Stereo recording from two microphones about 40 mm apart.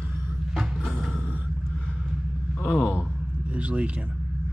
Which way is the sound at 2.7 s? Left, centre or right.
Left.